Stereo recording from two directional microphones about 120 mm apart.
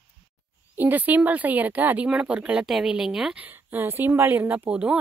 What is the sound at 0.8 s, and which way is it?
Speech, 15° right (ahead or behind).